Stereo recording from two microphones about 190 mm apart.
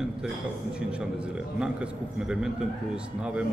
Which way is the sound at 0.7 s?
5° right (ahead or behind).